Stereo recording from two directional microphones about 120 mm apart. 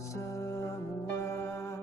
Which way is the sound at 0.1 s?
25° left (ahead or behind).